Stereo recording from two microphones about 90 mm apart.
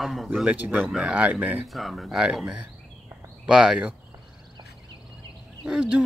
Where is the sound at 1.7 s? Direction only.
Centre (ahead or behind).